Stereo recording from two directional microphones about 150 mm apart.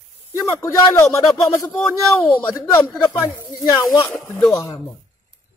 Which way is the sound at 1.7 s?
Centre (ahead or behind).